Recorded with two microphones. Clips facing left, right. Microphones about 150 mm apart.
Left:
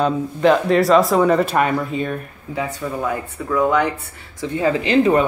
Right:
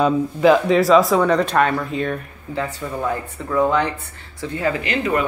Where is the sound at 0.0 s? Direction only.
5° right (ahead or behind).